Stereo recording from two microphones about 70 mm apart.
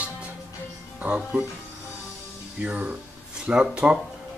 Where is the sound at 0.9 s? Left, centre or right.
Centre.